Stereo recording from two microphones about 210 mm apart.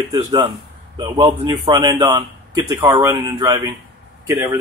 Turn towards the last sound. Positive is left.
turn(degrees=-15)  # may be behind; listen again after turning